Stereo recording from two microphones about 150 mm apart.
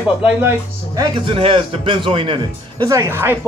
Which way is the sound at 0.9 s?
30° right (ahead or behind).